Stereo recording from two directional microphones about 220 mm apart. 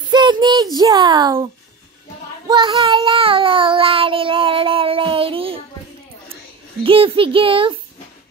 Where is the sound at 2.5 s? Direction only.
20° right (ahead or behind).